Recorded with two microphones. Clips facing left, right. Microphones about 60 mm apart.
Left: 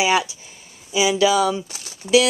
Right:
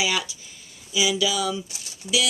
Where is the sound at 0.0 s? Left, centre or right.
Left.